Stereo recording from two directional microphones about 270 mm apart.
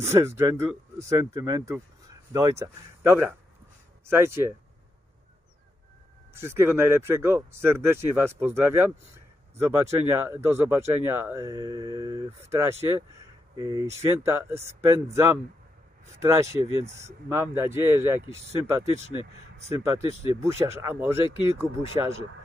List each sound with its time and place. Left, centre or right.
0.0 s speech: centre
6.3 s speech: centre
16.2 s speech: centre
16.6 s speech: right
17.0 s speech: centre